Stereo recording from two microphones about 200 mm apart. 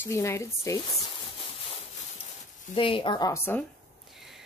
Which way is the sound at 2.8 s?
25° left (ahead or behind).